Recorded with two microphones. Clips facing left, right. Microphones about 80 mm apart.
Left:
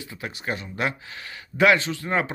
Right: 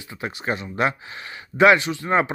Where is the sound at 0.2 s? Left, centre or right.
Right.